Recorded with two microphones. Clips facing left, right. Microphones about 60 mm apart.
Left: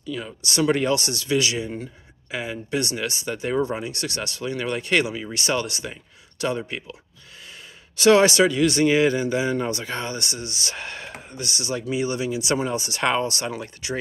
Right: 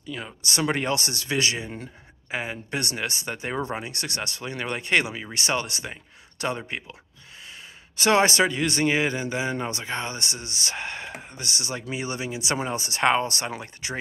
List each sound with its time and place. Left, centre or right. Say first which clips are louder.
0.0 s a man's voice: left 3 dB; right